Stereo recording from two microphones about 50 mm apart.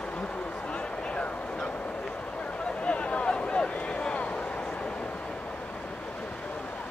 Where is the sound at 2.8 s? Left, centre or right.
Left.